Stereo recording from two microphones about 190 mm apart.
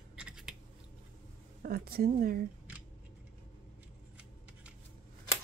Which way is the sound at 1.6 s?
55° right (ahead or behind).